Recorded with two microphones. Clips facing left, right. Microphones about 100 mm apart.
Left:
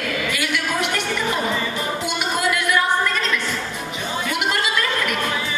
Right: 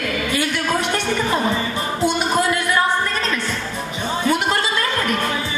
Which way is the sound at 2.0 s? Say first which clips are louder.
Right 6 dB; 35° right (ahead or behind).